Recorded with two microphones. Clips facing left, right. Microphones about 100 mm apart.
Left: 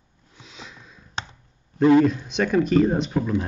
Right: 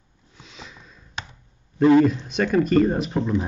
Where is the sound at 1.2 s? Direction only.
30° left (ahead or behind).